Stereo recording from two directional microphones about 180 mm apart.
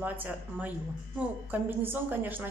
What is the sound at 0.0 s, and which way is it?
Speech, 10° right (ahead or behind).